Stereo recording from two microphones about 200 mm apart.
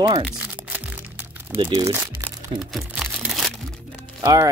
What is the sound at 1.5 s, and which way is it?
Speech, 20° right (ahead or behind).